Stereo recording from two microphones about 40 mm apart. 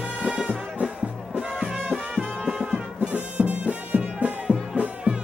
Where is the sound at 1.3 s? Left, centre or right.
Centre.